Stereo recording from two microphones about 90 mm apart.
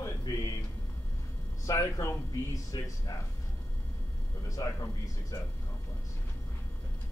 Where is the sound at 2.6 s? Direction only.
40° left (ahead or behind).